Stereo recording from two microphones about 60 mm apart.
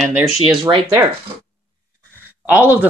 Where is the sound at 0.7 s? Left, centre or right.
Right.